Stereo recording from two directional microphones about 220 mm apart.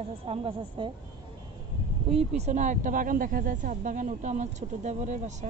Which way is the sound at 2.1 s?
30° right (ahead or behind).